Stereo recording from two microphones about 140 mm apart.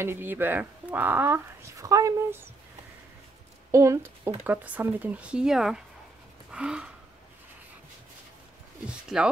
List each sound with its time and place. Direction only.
0.0 s speech: 15° right (ahead or behind)
3.7 s a woman's voice: 20° right (ahead or behind); by 5.8 s 5° right (ahead or behind)
6.5 s a sound: 5° right (ahead or behind)
8.8 s speech: 5° right (ahead or behind)